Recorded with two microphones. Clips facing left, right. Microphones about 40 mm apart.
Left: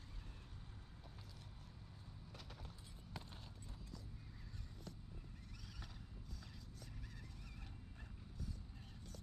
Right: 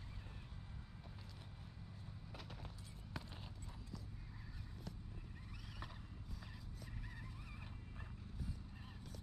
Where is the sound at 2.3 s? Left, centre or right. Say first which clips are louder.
Right 3 dB; centre.